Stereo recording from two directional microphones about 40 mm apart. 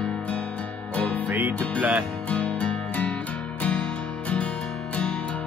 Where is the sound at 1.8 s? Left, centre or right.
Right.